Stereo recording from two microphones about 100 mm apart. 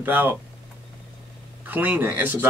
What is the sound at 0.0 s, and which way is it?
Speech, 20° right (ahead or behind).